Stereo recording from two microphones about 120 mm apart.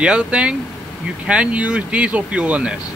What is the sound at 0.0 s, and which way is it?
Speech, 10° right (ahead or behind).